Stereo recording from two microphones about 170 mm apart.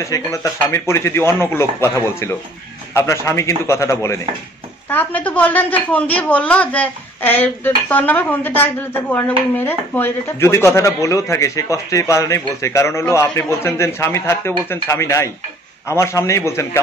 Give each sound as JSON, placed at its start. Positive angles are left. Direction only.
{"t": 0.0, "sound": "speech", "side_deg": 20}